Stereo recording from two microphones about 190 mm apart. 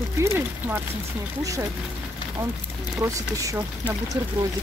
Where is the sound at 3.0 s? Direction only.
15° right (ahead or behind).